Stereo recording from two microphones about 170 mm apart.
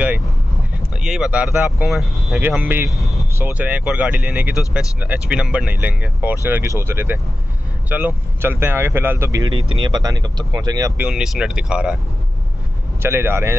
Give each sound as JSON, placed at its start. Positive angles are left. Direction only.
{"t": 1.0, "sound": "speech", "side_deg": -5}
{"t": 3.0, "sound": "vehicle", "side_deg": 0}
{"t": 3.3, "sound": "speech", "side_deg": -10}
{"t": 9.4, "sound": "speech", "side_deg": -25}
{"t": 11.0, "sound": "speech", "side_deg": -5}
{"t": 13.0, "sound": "speech", "side_deg": -15}